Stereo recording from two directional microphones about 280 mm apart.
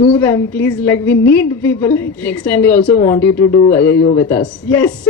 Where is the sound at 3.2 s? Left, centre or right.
Left.